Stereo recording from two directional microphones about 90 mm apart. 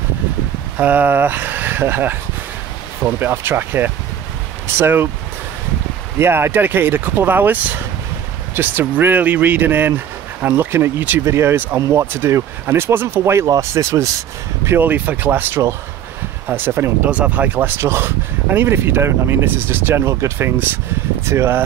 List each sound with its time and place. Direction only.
0.7 s speech: 20° right (ahead or behind)
6.1 s speech: 25° right (ahead or behind)
14.9 s speech: 20° right (ahead or behind)
17.1 s speech: 15° right (ahead or behind)